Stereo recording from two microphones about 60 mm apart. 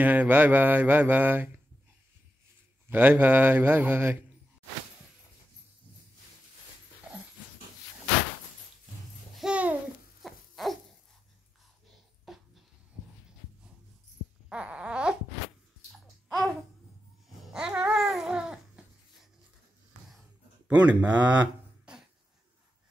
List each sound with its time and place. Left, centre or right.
0.0 s mantra: right
2.9 s speech: right
9.5 s babbling: right
10.2 s owl: centre
12.3 s a sound: centre
14.5 s babbling: centre
16.3 s babbling: centre
17.4 s babbling: centre
20.6 s mantra: centre
21.9 s a sound: centre